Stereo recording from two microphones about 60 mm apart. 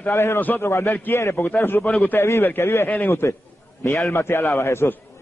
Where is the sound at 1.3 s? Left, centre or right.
Left.